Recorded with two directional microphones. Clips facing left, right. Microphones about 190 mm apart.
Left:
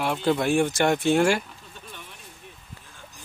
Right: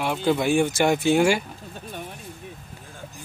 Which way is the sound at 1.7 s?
45° right (ahead or behind).